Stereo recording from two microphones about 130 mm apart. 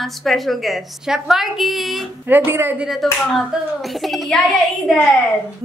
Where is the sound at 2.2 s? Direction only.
15° right (ahead or behind).